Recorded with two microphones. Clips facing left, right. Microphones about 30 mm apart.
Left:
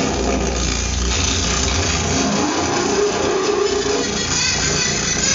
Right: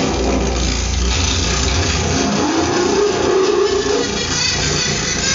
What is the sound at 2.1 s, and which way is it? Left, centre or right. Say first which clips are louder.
Music: right 3 dB; centre.